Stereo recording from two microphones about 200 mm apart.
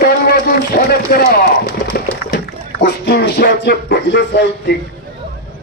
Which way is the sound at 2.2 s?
50° left (ahead or behind).